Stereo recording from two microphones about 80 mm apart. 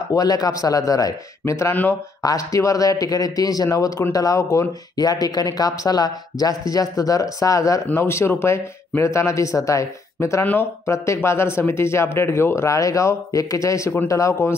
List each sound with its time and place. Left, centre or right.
0.1 s speech: left
1.4 s speech: left
1.7 s speech: left
2.2 s speech: left
4.9 s speech: left
7.9 s speech: left
10.4 s speech: left
11.1 s speech: left